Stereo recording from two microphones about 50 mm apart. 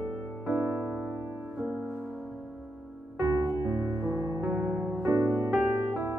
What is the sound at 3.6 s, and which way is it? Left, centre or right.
Music, right.